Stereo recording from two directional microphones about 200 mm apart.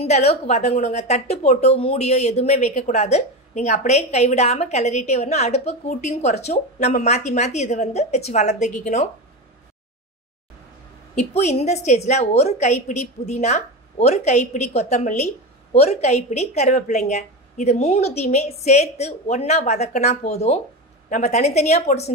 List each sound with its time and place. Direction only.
0.0 s a woman's voice: 30° left (ahead or behind)
11.1 s a woman's voice: 35° left (ahead or behind)